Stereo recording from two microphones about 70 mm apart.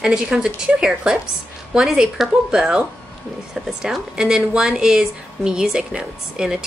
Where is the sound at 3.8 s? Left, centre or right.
Centre.